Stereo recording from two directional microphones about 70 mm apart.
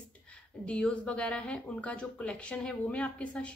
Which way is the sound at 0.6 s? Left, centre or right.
Centre.